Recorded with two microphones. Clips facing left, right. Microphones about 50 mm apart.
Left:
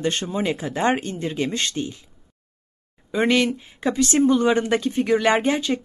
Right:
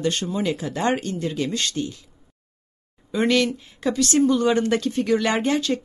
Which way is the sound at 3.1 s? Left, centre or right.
Left.